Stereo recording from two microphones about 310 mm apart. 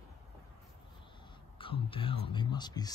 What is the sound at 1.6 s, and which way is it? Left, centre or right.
Whispering, centre.